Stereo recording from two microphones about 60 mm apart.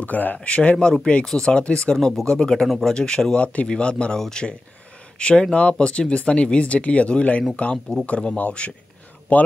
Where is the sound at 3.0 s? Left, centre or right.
Centre.